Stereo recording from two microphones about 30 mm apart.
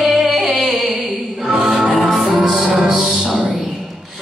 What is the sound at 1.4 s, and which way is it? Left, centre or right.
Music, right.